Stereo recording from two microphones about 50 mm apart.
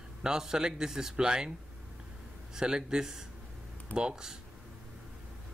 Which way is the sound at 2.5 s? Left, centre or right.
Centre.